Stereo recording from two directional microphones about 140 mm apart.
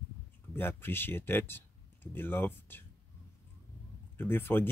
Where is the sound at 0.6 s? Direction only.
15° left (ahead or behind).